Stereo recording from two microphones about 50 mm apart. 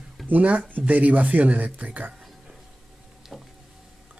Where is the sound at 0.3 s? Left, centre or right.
Right.